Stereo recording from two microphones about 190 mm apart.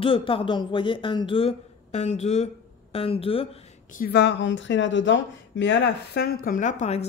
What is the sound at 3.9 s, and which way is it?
Speech, 55° left (ahead or behind).